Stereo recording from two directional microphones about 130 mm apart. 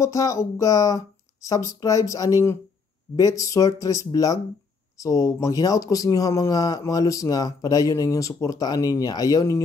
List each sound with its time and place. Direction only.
0.0 s speech: 25° left (ahead or behind)